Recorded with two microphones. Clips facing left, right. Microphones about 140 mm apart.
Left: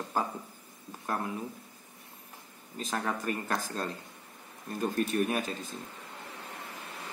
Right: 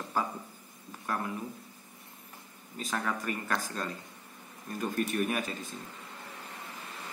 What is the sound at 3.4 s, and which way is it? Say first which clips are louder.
Speech: left 1 dB; 30° left (ahead or behind).